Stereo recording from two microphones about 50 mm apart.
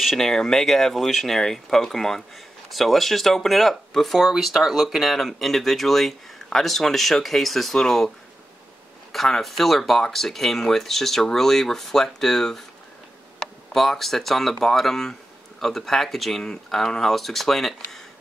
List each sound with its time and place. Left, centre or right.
0.0 s speech: centre
0.3 s speech: centre
9.1 s speech: centre
13.7 s speech: centre